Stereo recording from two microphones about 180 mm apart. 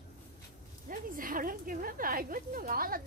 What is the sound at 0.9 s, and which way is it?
Speech, 50° right (ahead or behind).